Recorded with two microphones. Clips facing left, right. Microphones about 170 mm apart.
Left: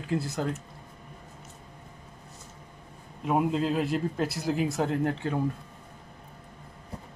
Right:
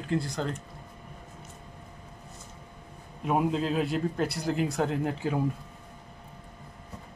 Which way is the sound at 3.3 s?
Centre (ahead or behind).